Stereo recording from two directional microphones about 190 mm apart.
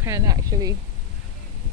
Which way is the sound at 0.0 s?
15° right (ahead or behind).